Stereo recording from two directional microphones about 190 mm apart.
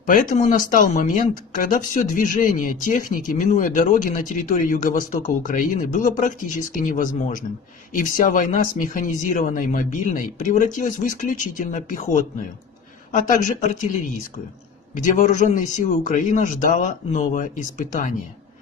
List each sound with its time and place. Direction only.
0.0 s a woman's voice: 45° left (ahead or behind)
15.0 s speech: 40° left (ahead or behind)